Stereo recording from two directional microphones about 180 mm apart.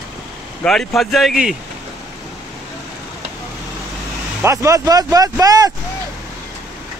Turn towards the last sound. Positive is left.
turn(degrees=-20)  # may be behind; listen again after turning